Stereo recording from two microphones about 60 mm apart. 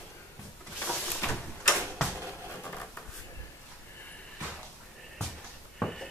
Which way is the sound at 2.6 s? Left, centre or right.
Left.